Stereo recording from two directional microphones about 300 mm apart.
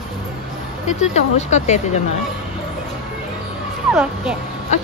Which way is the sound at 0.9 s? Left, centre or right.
Left.